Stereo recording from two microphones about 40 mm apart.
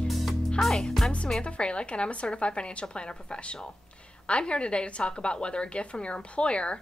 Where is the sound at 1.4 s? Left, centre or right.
Left.